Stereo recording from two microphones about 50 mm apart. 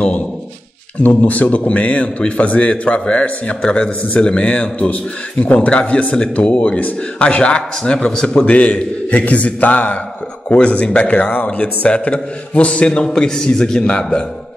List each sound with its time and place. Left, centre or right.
1.0 s a man's voice: left